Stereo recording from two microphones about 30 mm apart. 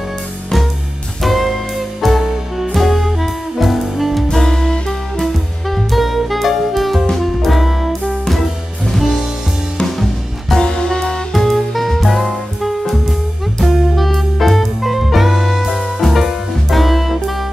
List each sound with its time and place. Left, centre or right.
1.2 s music: centre
4.5 s music: centre
5.2 s music: centre
10.6 s music: left
11.3 s music: centre
13.7 s music: centre
13.9 s music: centre